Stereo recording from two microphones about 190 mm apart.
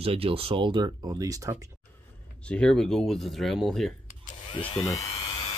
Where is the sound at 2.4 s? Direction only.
5° left (ahead or behind).